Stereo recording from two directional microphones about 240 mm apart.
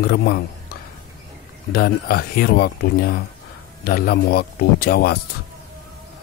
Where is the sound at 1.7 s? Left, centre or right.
Left.